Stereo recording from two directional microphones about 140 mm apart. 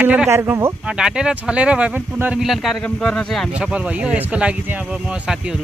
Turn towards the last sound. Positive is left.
turn(degrees=-10)  # may be behind; listen again after turning